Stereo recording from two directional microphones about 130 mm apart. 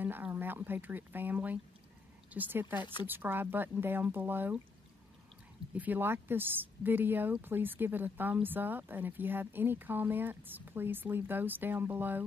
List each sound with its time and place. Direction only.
0.0 s speech: 15° right (ahead or behind)
5.8 s speech: 15° right (ahead or behind)